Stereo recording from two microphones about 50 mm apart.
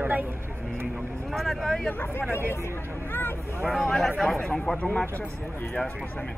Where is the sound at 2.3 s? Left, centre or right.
Left.